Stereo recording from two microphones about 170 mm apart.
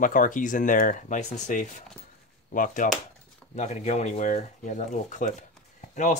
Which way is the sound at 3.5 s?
40° left (ahead or behind).